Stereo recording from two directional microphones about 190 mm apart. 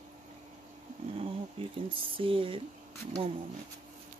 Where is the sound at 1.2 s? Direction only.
30° right (ahead or behind).